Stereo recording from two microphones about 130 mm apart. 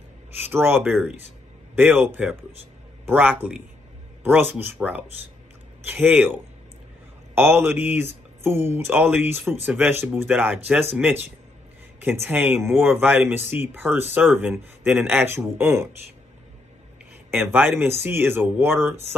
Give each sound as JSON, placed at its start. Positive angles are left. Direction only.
{"t": 0.4, "sound": "speech", "side_deg": -15}
{"t": 1.8, "sound": "speech", "side_deg": -15}
{"t": 7.3, "sound": "speech", "side_deg": -20}
{"t": 17.3, "sound": "speech", "side_deg": -15}